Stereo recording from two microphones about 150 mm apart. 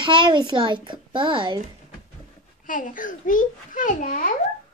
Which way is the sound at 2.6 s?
60° left (ahead or behind).